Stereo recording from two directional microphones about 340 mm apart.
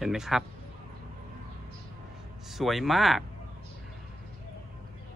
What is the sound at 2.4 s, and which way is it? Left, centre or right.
Speech, centre.